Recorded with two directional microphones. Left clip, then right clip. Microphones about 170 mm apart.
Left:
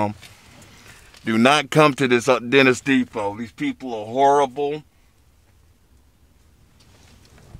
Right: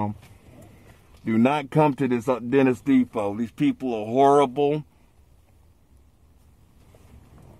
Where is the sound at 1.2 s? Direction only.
10° left (ahead or behind).